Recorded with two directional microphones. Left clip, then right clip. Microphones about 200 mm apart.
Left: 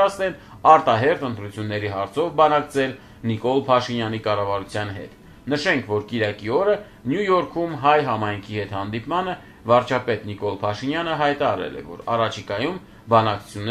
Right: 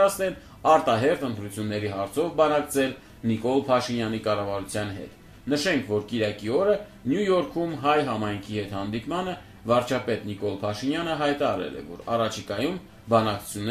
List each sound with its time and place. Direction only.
0.0 s speech: 15° right (ahead or behind)